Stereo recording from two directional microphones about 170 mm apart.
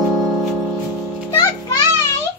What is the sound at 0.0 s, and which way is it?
Music, centre (ahead or behind).